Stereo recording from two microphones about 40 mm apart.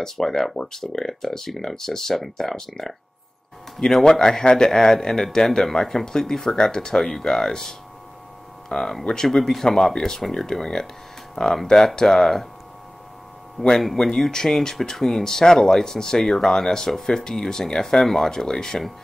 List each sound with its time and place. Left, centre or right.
0.0 s speech: centre
13.6 s speech: centre